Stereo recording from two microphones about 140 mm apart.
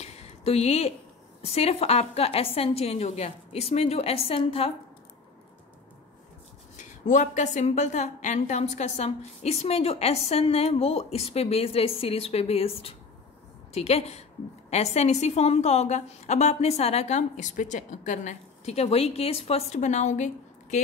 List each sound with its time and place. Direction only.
0.0 s a sound: 45° left (ahead or behind)
1.4 s a woman's voice: 45° left (ahead or behind)
6.8 s a woman's voice: 60° left (ahead or behind)